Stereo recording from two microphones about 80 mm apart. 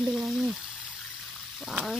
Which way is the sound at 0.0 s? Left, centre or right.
Centre.